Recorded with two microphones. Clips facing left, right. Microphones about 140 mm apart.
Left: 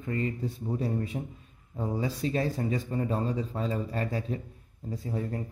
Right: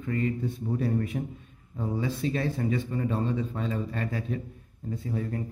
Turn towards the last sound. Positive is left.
turn(degrees=35)  # may be behind; listen again after turning